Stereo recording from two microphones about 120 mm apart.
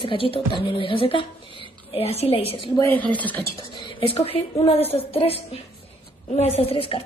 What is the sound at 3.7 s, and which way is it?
Speech, 45° left (ahead or behind).